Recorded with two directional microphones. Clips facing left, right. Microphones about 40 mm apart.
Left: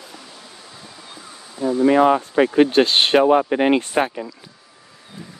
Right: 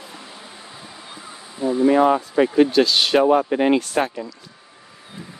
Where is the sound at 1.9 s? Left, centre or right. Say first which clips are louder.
Left 2 dB; left.